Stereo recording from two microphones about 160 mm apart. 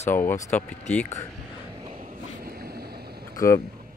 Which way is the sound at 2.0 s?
65° right (ahead or behind).